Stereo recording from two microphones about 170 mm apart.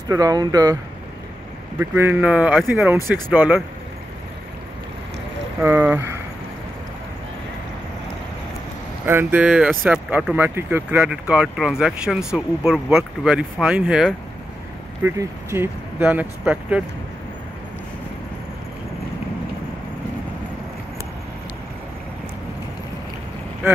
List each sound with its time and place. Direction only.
0.1 s speech: 20° right (ahead or behind)
1.8 s speech: 10° right (ahead or behind)
5.6 s speech: 15° right (ahead or behind)
9.0 s speech: 10° right (ahead or behind)